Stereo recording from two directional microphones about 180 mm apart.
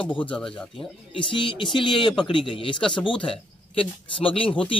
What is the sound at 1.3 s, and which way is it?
Speech, 30° left (ahead or behind).